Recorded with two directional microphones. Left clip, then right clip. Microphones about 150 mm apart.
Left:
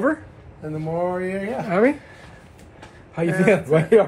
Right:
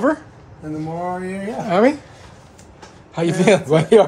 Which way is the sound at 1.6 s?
15° right (ahead or behind).